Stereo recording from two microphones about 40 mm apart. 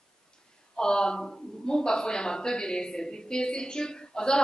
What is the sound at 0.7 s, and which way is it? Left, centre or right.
Speech, centre.